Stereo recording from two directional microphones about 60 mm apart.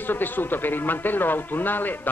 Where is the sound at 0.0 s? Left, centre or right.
Left.